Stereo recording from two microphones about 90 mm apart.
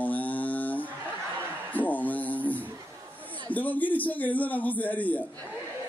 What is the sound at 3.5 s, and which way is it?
A man's voice, 20° left (ahead or behind).